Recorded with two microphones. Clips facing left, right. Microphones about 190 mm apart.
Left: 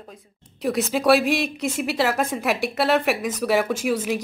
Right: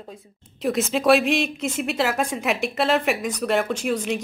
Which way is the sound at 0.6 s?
Centre (ahead or behind).